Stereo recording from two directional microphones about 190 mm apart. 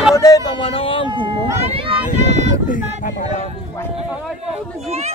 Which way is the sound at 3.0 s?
45° left (ahead or behind).